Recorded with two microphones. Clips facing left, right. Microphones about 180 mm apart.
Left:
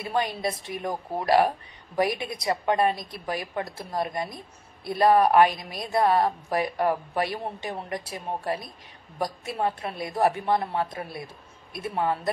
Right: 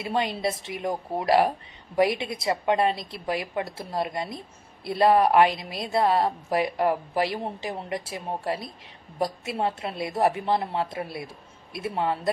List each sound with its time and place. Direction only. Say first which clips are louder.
0.0 s a woman's voice: right 1 dB; 25° right (ahead or behind)